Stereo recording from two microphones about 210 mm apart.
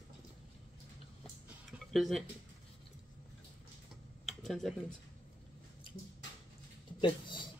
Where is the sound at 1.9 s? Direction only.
Centre (ahead or behind).